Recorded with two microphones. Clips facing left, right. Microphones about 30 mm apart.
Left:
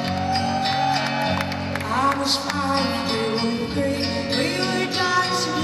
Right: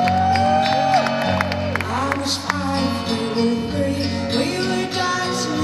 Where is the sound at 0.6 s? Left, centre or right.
Left.